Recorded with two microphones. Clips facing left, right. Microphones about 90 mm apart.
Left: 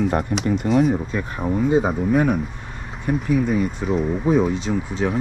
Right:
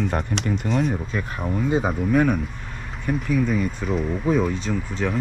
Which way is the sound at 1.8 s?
40° left (ahead or behind).